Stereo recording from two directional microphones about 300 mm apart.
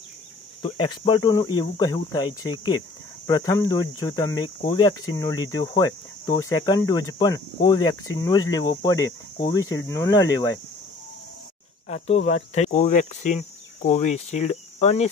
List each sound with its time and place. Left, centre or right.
0.6 s speech: centre
11.9 s speech: left